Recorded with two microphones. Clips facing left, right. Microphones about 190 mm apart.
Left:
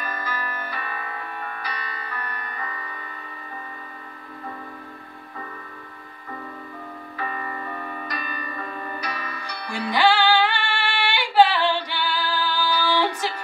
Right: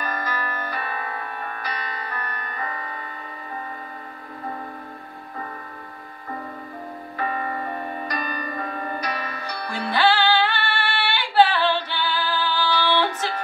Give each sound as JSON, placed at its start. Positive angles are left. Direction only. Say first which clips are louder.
{"t": 0.0, "sound": "music", "louder": "right 3 dB", "side_deg": -45}
{"t": 7.2, "sound": "music", "louder": "right 5 dB", "side_deg": -40}
{"t": 9.7, "sound": "music", "louder": "left 1 dB", "side_deg": 15}